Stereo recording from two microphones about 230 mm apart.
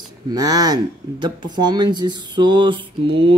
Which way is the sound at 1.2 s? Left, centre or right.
Centre.